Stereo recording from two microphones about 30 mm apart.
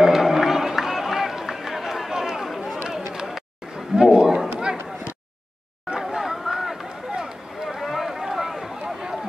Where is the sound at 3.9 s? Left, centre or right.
Right.